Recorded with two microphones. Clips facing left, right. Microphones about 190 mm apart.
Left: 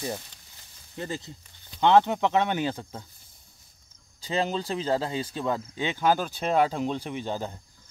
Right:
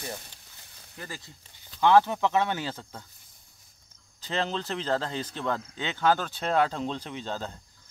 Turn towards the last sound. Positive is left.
turn(degrees=15)  # may be behind; listen again after turning